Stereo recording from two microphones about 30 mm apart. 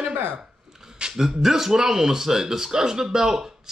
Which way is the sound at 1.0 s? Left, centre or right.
Centre.